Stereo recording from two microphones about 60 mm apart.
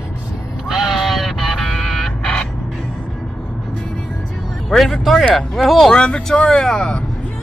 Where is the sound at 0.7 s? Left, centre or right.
Centre.